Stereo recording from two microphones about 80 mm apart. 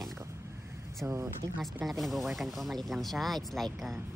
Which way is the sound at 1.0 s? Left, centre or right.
Right.